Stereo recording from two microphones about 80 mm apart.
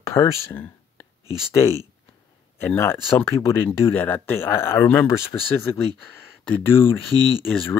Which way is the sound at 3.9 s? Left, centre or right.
Left.